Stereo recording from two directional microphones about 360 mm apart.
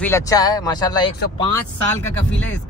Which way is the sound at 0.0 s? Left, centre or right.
Centre.